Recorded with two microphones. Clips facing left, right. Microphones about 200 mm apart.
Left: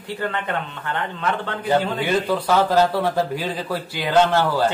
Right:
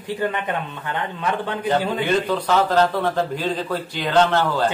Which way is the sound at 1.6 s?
10° left (ahead or behind).